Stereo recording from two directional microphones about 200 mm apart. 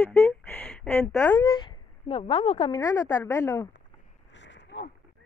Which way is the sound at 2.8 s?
15° left (ahead or behind).